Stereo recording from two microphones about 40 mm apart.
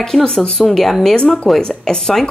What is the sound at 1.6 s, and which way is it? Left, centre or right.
Speech, centre.